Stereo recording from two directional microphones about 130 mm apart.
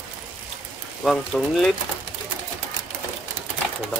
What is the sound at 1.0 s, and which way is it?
Speech, centre (ahead or behind).